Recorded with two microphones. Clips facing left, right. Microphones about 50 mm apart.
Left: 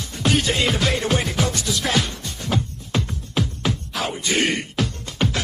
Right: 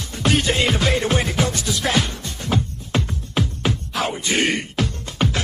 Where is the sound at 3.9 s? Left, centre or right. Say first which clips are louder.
Right 1 dB; centre.